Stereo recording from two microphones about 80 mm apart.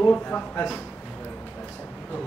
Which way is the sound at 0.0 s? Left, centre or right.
Centre.